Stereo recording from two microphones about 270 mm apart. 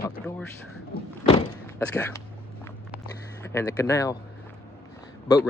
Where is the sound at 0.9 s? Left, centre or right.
Left.